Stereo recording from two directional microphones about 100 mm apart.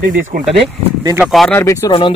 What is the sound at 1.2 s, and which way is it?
Speech, centre (ahead or behind).